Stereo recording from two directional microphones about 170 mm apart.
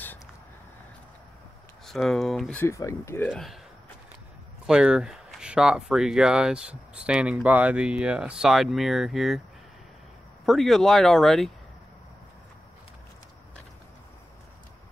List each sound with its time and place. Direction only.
1.9 s speech: centre (ahead or behind)
2.6 s speech: 20° left (ahead or behind)
3.3 s speech: centre (ahead or behind)
4.6 s speech: 5° right (ahead or behind)
10.4 s speech: centre (ahead or behind)